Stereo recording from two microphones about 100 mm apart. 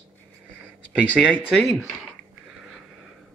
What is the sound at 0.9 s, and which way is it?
Speech, 10° right (ahead or behind).